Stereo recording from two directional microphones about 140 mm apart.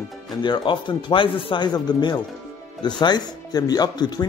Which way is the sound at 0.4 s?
35° left (ahead or behind).